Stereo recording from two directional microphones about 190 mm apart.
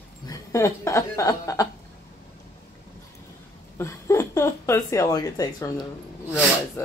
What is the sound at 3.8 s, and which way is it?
Speech, 15° left (ahead or behind).